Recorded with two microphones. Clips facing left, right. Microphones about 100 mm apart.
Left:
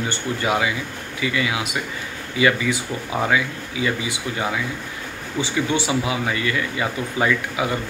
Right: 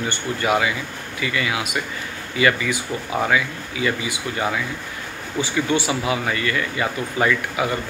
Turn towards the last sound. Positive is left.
turn(degrees=15)  # may be behind; listen again after turning